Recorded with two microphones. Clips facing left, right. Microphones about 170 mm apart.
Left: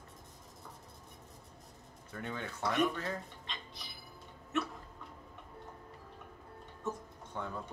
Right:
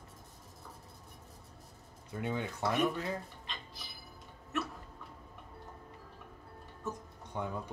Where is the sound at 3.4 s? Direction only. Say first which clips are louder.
Even; centre (ahead or behind).